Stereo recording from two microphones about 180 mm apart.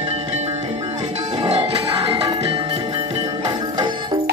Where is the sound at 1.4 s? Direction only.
35° right (ahead or behind).